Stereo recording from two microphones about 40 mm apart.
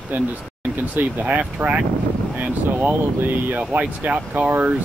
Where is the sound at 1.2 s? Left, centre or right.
Right.